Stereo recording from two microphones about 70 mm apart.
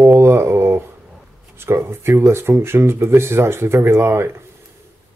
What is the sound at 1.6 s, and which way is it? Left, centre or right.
Speech, right.